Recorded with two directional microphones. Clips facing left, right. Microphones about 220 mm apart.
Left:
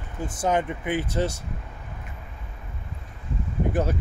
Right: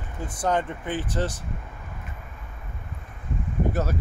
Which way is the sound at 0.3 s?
10° left (ahead or behind).